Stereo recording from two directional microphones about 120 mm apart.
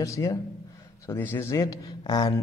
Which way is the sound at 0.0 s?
25° left (ahead or behind).